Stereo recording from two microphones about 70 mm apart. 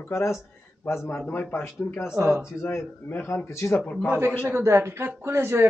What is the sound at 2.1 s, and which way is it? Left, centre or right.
Speech, right.